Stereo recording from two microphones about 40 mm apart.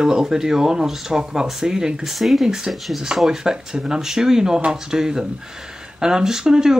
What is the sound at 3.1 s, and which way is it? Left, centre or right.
Speech, centre.